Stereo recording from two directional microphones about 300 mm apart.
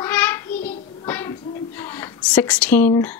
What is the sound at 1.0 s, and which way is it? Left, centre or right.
Speech, centre.